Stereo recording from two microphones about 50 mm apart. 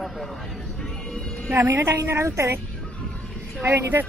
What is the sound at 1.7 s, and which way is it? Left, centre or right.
Speech, right.